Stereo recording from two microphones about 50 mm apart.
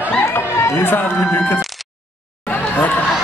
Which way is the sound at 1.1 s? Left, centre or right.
Left.